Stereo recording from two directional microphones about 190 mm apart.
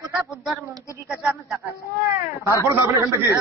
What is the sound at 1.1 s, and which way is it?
Speech, 5° right (ahead or behind).